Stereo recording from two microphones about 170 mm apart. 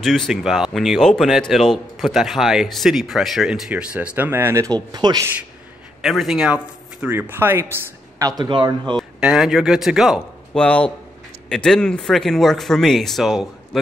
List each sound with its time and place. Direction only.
0.0 s a man's voice: centre (ahead or behind); by 5.3 s 25° right (ahead or behind)
6.0 s speech: centre (ahead or behind)
8.4 s speech: 25° right (ahead or behind)
8.9 s a man's voice: 5° right (ahead or behind)